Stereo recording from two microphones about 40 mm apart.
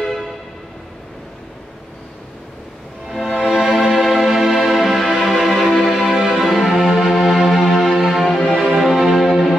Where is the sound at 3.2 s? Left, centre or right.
Centre.